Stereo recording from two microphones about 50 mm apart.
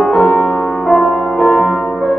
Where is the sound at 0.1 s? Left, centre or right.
Centre.